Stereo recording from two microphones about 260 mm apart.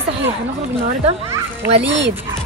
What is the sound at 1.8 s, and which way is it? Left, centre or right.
Speech, right.